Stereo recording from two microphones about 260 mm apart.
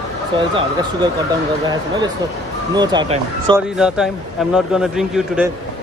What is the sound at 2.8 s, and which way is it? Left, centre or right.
Speech, centre.